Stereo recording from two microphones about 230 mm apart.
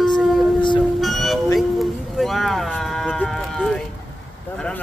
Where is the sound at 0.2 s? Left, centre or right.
Centre.